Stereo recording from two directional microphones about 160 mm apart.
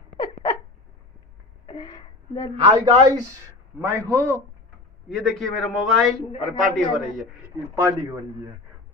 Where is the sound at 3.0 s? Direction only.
20° right (ahead or behind).